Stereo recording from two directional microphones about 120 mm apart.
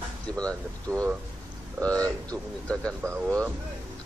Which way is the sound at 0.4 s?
10° left (ahead or behind).